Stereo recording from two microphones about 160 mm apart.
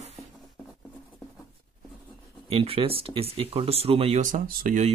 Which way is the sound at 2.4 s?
35° right (ahead or behind).